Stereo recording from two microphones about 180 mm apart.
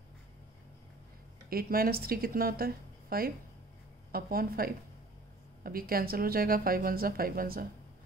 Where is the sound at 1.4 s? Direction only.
55° right (ahead or behind).